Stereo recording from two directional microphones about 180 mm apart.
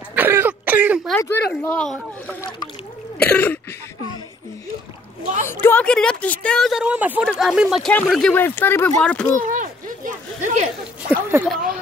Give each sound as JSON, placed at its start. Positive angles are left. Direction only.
{"t": 0.1, "sound": "throat clearing", "side_deg": -10}
{"t": 1.6, "sound": "speech", "side_deg": 5}
{"t": 5.5, "sound": "speech", "side_deg": 10}
{"t": 9.4, "sound": "a sound", "side_deg": -50}
{"t": 11.1, "sound": "speech", "side_deg": -10}
{"t": 11.4, "sound": "speech", "side_deg": 0}